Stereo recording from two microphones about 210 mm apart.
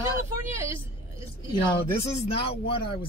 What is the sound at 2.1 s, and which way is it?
Speech, 25° left (ahead or behind).